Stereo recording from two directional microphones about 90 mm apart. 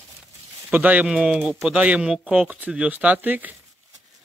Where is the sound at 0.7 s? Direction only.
15° right (ahead or behind).